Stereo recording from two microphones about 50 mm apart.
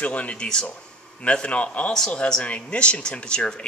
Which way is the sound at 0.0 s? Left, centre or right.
Left.